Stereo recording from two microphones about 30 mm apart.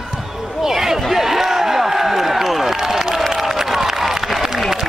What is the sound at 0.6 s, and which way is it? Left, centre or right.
Speech, centre.